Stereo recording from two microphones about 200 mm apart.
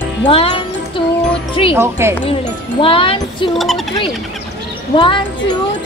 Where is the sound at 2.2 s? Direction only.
25° left (ahead or behind).